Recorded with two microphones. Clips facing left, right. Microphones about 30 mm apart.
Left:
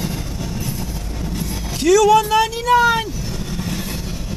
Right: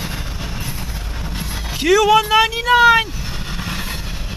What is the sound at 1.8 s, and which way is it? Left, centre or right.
Speech, right.